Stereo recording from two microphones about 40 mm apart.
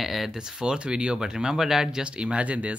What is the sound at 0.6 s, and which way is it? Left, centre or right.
Speech, right.